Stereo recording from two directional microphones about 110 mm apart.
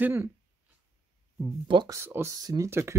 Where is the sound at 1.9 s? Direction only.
25° right (ahead or behind).